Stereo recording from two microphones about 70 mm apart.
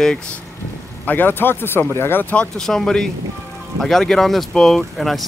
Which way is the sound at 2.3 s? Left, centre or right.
Centre.